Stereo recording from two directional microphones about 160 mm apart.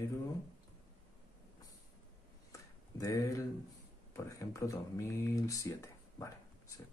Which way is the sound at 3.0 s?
20° left (ahead or behind).